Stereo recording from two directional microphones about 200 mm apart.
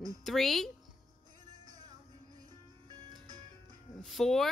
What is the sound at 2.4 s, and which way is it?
Music, 20° right (ahead or behind).